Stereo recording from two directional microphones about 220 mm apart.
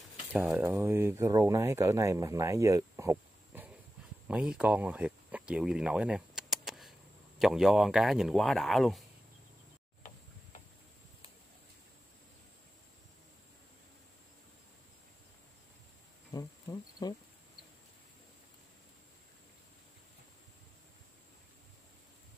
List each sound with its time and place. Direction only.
0.3 s speech: 10° right (ahead or behind)
16.3 s insect: 15° left (ahead or behind)